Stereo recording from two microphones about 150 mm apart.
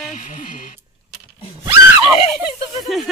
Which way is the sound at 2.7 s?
Centre (ahead or behind).